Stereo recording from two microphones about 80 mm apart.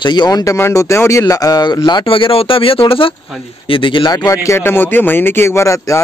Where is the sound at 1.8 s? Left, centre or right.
Left.